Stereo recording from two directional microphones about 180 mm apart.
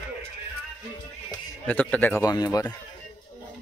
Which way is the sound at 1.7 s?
10° left (ahead or behind).